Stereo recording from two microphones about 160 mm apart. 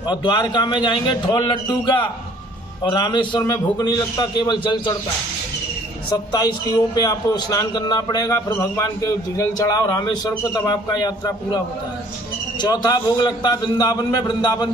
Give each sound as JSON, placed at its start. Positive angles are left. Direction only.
{"t": 0.0, "sound": "a man's voice", "side_deg": 25}
{"t": 6.0, "sound": "a man's voice", "side_deg": 25}